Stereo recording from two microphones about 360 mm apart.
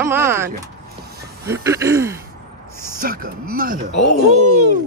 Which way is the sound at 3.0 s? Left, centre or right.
Right.